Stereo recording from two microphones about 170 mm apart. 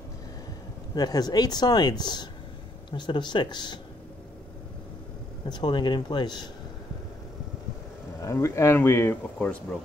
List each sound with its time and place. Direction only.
0.9 s speech: 25° left (ahead or behind)
5.5 s speech: 25° left (ahead or behind)
8.2 s speech: 15° left (ahead or behind)